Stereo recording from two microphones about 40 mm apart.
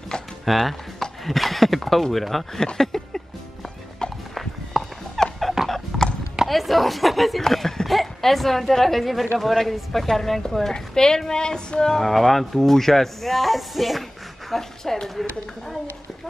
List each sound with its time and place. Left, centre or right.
0.5 s speech: centre
4.0 s walk: centre
4.7 s horse: centre
5.2 s dog: centre
5.9 s clip-clop: centre
6.5 s speech: centre
10.7 s speech: centre
12.1 s speech: centre